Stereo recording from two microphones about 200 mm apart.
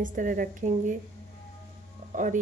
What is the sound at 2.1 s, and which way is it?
Speech, 40° right (ahead or behind).